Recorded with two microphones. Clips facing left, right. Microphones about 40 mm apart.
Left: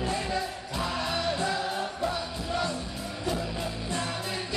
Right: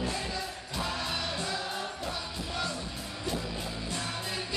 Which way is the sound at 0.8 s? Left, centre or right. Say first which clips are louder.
Left 5 dB; left.